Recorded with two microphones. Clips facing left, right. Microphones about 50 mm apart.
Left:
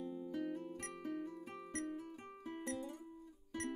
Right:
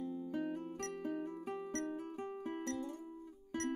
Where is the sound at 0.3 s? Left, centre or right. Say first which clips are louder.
Right 2 dB; right.